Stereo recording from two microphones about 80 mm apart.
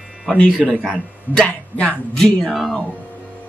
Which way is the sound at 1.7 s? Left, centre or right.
Centre.